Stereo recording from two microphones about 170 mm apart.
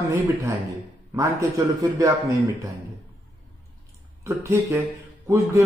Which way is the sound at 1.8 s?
20° right (ahead or behind).